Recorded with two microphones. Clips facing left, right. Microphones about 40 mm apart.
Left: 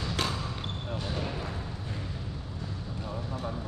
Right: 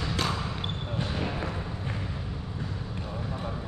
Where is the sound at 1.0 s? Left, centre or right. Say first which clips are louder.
Right 4 dB; right.